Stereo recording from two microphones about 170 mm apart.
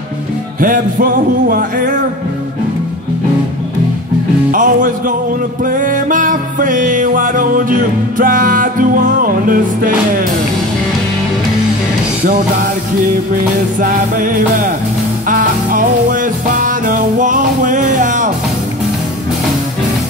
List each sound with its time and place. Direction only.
0.6 s music: 55° right (ahead or behind)
4.5 s music: 55° right (ahead or behind)
13.7 s music: 55° right (ahead or behind)